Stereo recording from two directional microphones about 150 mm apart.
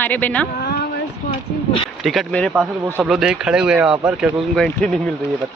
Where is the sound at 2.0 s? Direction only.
Centre (ahead or behind).